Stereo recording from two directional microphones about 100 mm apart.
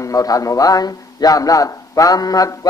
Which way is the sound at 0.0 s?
35° left (ahead or behind).